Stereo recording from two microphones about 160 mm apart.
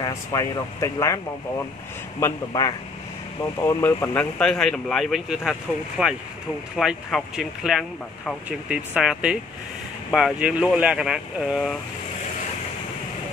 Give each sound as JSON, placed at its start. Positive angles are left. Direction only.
{"t": 0.0, "sound": "speech", "side_deg": 25}
{"t": 4.4, "sound": "speech", "side_deg": 5}